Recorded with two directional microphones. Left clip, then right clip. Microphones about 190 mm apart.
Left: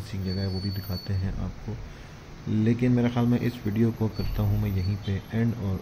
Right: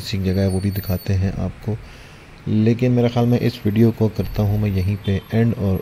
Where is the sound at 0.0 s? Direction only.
45° right (ahead or behind).